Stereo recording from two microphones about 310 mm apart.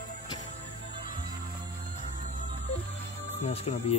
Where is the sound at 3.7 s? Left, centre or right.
Left.